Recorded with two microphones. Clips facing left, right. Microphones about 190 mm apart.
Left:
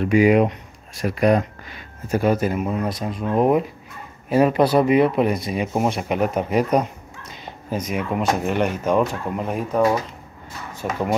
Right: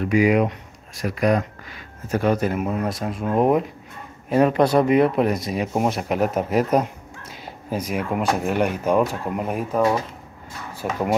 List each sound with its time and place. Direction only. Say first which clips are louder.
0.0 s speech: left 2 dB; 25° left (ahead or behind)
2.0 s speech: left 1 dB; 10° left (ahead or behind)